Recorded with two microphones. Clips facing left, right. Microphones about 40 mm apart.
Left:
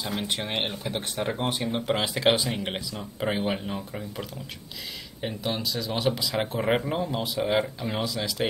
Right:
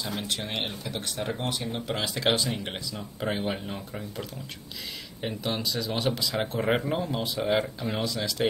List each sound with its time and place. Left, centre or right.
0.0 s speech: left; by 8.5 s centre